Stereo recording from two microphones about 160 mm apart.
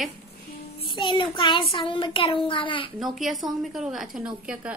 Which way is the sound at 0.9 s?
30° left (ahead or behind).